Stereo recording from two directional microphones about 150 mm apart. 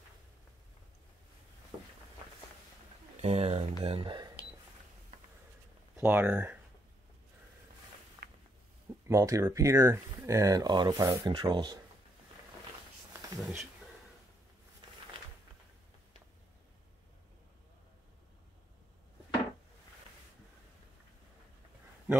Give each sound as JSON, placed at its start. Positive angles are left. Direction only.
{"t": 3.2, "sound": "speech", "side_deg": -45}
{"t": 5.9, "sound": "speech", "side_deg": -10}
{"t": 8.2, "sound": "walk", "side_deg": -90}
{"t": 9.0, "sound": "speech", "side_deg": -20}
{"t": 13.4, "sound": "speech", "side_deg": 0}